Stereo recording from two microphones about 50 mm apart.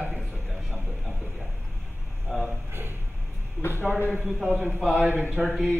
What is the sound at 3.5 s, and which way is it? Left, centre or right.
Speech, left.